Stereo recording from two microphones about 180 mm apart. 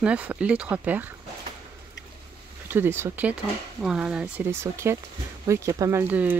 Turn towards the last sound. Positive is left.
turn(degrees=-10)  # may be behind; listen again after turning